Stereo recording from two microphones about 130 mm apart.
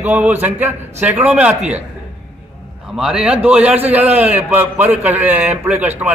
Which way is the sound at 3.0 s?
5° right (ahead or behind).